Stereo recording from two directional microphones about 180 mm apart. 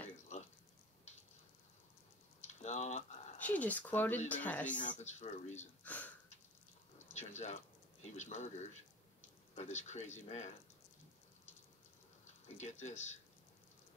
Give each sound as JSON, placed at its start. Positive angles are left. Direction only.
{"t": 2.4, "sound": "typing", "side_deg": 40}
{"t": 3.3, "sound": "speech", "side_deg": 10}
{"t": 4.7, "sound": "speech", "side_deg": 45}
{"t": 5.9, "sound": "a sound", "side_deg": 10}
{"t": 7.2, "sound": "speech", "side_deg": 40}
{"t": 12.5, "sound": "speech", "side_deg": 40}